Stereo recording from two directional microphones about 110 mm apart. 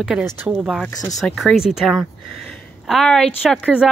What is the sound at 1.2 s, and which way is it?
Speech, centre (ahead or behind).